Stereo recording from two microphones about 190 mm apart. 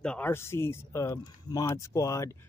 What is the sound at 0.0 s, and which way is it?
Speech, 5° left (ahead or behind).